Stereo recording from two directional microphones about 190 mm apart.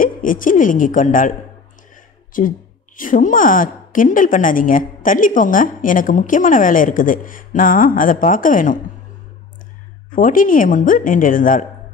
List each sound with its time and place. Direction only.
0.0 s a woman's voice: 45° left (ahead or behind)
2.3 s a woman's voice: 45° left (ahead or behind)
10.1 s a woman's voice: 45° left (ahead or behind)